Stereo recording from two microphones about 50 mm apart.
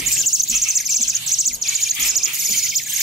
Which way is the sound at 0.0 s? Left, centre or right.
Centre.